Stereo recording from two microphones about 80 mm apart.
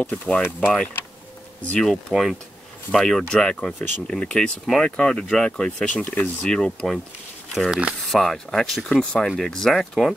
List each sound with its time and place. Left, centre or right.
0.0 s speech: centre
1.8 s speech: centre